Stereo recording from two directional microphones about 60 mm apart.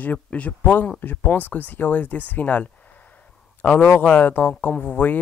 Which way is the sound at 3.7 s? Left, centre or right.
Left.